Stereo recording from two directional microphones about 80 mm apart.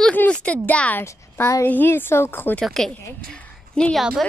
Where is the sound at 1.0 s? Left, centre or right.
Left.